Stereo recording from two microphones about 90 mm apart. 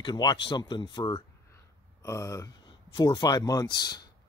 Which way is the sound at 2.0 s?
35° left (ahead or behind).